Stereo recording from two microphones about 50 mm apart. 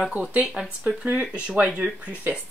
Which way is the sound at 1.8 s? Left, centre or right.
Right.